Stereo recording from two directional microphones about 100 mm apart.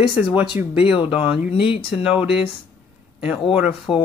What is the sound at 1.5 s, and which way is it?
Speech, 60° left (ahead or behind).